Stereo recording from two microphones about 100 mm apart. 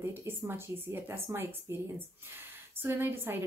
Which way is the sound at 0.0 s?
25° right (ahead or behind).